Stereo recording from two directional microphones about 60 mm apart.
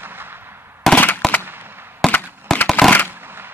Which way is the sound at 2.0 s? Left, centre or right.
Centre.